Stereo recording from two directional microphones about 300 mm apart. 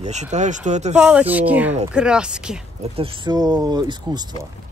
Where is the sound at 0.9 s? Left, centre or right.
Centre.